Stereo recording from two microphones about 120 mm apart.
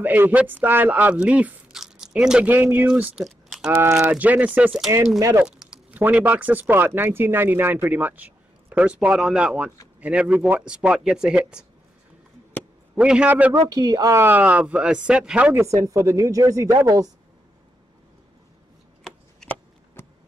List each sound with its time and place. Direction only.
0.0 s speech: 15° right (ahead or behind)
3.3 s typing: 5° right (ahead or behind)
4.0 s speech: 15° right (ahead or behind)
12.9 s speech: 10° right (ahead or behind)
13.6 s speech: 30° right (ahead or behind); by 15.5 s 10° right (ahead or behind)
15.5 s speech: 25° right (ahead or behind)
19.4 s a sound: 5° left (ahead or behind)
20.0 s a sound: 20° left (ahead or behind)